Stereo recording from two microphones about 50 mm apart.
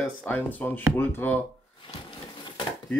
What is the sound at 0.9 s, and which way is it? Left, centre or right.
Speech, left.